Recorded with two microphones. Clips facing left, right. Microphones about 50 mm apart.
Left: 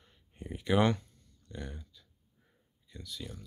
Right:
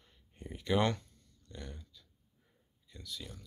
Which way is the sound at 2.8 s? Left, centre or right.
Centre.